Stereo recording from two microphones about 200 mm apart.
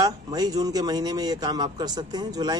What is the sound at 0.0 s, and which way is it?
Speech, 20° right (ahead or behind).